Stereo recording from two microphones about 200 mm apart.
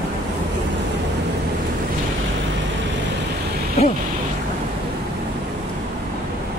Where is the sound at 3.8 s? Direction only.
35° left (ahead or behind).